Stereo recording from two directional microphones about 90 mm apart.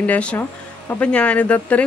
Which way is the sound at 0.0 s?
15° left (ahead or behind).